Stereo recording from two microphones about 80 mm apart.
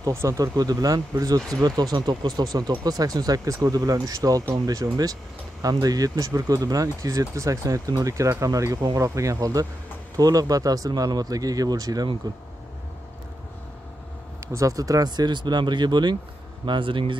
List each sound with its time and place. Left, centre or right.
0.0 s speech: right
14.4 s speech: right
16.6 s speech: right